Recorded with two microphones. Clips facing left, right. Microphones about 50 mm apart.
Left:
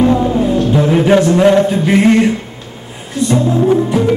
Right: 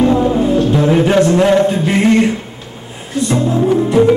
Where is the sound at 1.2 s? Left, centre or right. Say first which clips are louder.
Left 1 dB; centre.